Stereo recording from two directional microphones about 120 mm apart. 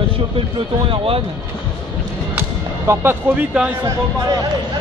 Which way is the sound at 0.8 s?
50° right (ahead or behind).